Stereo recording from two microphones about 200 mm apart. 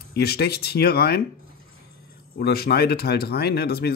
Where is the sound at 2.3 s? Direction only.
50° left (ahead or behind).